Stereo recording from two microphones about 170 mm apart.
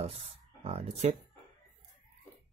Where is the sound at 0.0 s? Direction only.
35° right (ahead or behind).